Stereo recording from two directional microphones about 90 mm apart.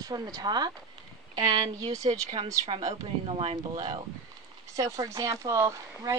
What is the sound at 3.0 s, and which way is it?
Speech, 85° right.